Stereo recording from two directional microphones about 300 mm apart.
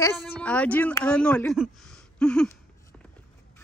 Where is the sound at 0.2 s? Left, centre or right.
Centre.